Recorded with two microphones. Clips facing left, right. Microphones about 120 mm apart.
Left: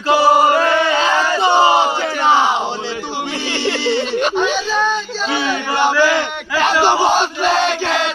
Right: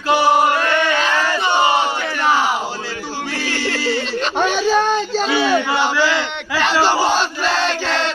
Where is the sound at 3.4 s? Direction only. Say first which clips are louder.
Left 2 dB; 20° left (ahead or behind).